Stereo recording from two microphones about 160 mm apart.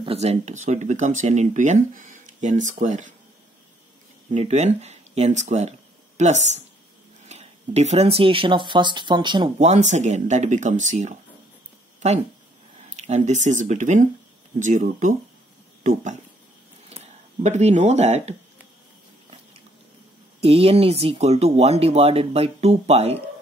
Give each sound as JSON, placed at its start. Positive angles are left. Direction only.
{"t": 0.0, "sound": "speech", "side_deg": -40}
{"t": 4.3, "sound": "speech", "side_deg": -45}
{"t": 9.6, "sound": "speech", "side_deg": -45}
{"t": 12.9, "sound": "speech", "side_deg": -45}
{"t": 20.4, "sound": "speech", "side_deg": -40}